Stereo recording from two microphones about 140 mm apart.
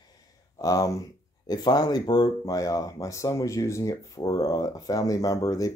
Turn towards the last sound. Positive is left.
turn(degrees=25)  # may be behind; listen again after turning